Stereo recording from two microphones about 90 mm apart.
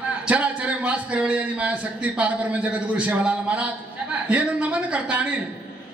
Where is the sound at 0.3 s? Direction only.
15° right (ahead or behind).